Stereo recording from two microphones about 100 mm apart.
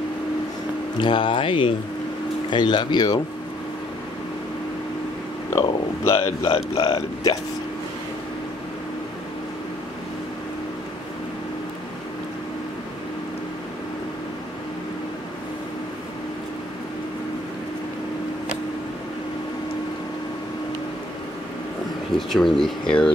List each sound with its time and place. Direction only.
0.9 s speech: 55° left (ahead or behind)
5.5 s speech: 30° left (ahead or behind)
6.1 s speech: 70° left (ahead or behind)
6.8 s speech: 40° left (ahead or behind)
22.1 s speech: 5° left (ahead or behind)